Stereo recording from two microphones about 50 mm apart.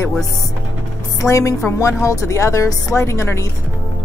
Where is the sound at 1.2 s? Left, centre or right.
Left.